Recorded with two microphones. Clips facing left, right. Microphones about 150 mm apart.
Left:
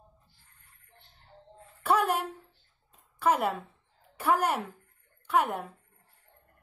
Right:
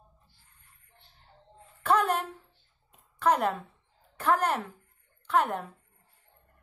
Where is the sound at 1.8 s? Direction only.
10° left (ahead or behind).